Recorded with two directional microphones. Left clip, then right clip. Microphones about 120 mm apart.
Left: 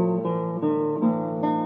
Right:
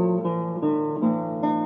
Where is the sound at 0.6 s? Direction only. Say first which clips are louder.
Even; 30° left (ahead or behind).